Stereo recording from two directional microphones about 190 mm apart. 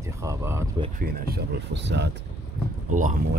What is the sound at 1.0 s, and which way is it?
Speech, 50° right (ahead or behind).